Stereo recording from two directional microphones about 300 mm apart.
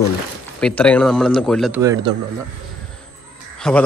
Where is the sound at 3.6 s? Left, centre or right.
Centre.